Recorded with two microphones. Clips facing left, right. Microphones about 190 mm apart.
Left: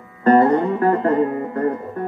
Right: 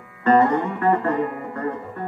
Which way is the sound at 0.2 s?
35° left (ahead or behind).